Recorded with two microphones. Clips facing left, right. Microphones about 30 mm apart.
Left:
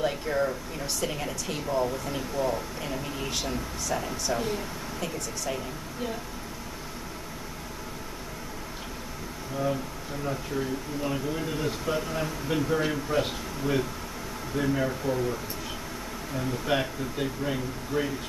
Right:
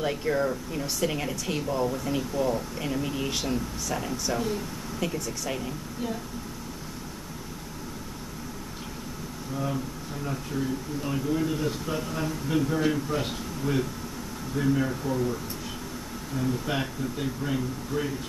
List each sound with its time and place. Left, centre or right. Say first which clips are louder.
0.0 s speech: right 1 dB; centre
4.4 s speech: right 1 dB; centre
5.0 s speech: right 3 dB; centre
10.2 s speech: even; centre
16.3 s speech: left 1 dB; centre